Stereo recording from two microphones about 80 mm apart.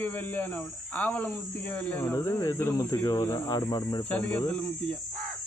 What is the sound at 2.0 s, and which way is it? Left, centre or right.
Speech, left.